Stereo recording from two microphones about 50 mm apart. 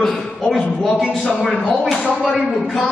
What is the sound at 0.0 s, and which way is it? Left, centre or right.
A man's voice, centre.